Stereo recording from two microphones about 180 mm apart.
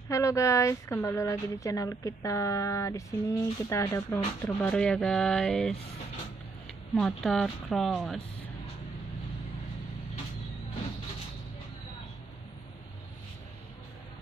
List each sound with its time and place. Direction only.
0.1 s a woman's voice: 15° left (ahead or behind)
7.0 s speech: centre (ahead or behind)